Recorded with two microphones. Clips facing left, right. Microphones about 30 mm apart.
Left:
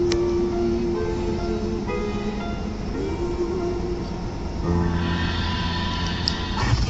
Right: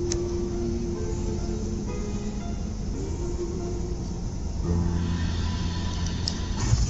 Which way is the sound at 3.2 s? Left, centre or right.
Left.